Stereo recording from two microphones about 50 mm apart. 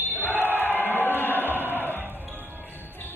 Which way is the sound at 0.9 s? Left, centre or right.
Left.